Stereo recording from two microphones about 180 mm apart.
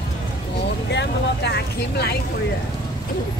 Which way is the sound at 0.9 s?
70° left (ahead or behind).